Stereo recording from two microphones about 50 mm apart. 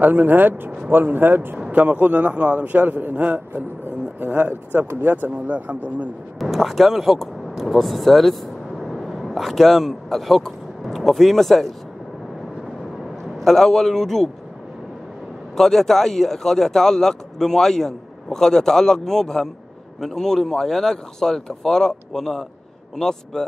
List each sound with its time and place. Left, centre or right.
0.0 s a man's voice: right
1.7 s a man's voice: right
6.4 s speech: centre
13.4 s speech: centre
15.5 s speech: centre